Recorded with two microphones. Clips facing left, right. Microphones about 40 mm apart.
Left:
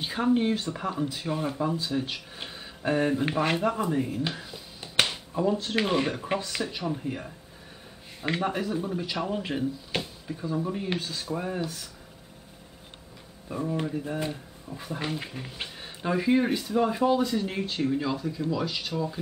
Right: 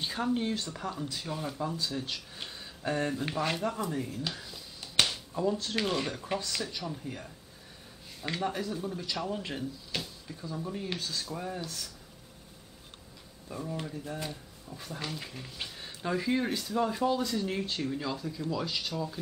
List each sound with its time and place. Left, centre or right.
0.0 s speech: left
13.5 s speech: left